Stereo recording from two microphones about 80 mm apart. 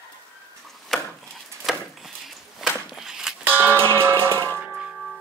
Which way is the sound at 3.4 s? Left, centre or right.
Right.